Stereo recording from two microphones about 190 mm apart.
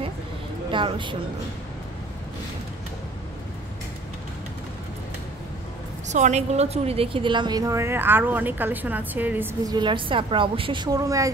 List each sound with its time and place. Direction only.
0.7 s speech: 25° right (ahead or behind)
6.0 s a woman's voice: 40° right (ahead or behind); by 9.8 s 10° right (ahead or behind)
9.8 s a woman's voice: 25° right (ahead or behind)